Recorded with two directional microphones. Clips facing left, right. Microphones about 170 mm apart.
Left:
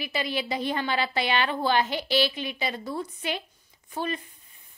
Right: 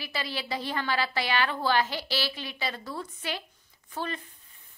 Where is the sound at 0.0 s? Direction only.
20° left (ahead or behind).